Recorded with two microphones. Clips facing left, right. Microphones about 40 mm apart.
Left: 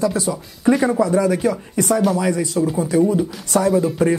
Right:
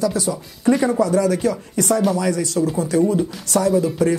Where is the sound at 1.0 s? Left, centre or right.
Centre.